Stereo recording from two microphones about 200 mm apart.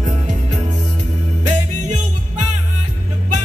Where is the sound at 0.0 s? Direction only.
35° right (ahead or behind).